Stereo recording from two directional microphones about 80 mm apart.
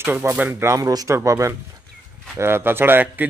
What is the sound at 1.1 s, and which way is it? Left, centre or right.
Speech, right.